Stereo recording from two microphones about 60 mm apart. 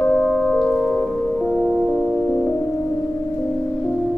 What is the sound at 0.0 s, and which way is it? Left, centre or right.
Singing bowl, left.